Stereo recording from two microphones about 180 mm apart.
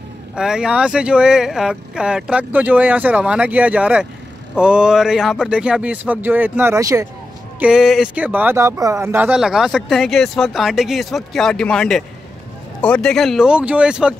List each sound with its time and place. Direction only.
0.4 s speech: 5° right (ahead or behind)
7.5 s speech: 5° right (ahead or behind)